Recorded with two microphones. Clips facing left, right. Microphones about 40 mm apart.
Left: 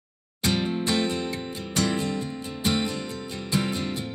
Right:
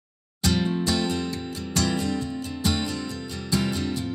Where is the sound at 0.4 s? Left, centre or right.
Left.